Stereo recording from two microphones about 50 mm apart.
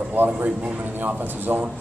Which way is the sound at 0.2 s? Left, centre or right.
Right.